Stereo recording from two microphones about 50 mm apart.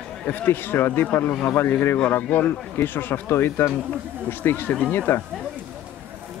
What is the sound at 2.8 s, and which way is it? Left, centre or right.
Speech, left.